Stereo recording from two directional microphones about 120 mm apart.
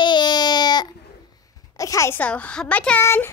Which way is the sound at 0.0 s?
40° left (ahead or behind).